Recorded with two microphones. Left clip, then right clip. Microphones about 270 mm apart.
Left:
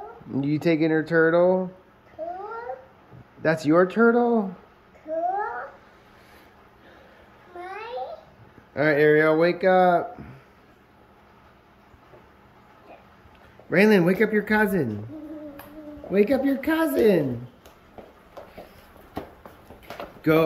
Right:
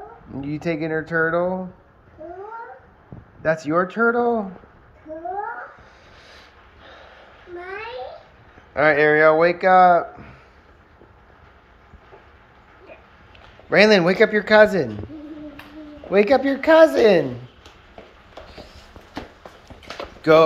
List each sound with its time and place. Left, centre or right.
0.3 s speech: centre
3.4 s speech: centre
6.3 s a sound: centre
8.7 s speech: centre
13.7 s speech: centre
16.1 s speech: centre
20.2 s a sound: centre